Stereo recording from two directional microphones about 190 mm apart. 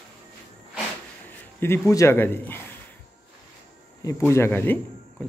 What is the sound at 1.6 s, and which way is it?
Speech, 15° left (ahead or behind).